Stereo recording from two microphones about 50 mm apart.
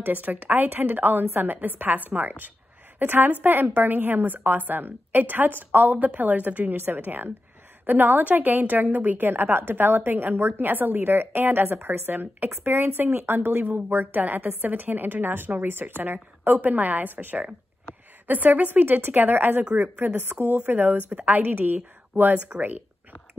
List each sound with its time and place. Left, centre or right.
0.0 s a woman's voice: right